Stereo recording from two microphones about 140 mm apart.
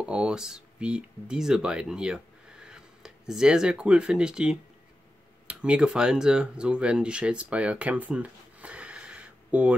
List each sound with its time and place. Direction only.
0.0 s speech: 5° right (ahead or behind)